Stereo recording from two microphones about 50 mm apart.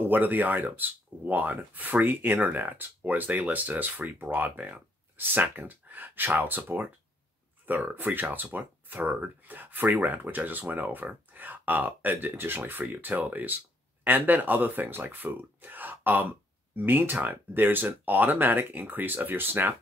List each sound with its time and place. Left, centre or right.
0.0 s speech: right